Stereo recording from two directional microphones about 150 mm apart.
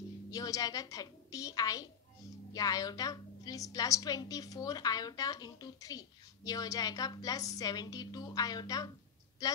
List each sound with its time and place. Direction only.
0.3 s a woman's voice: 25° left (ahead or behind)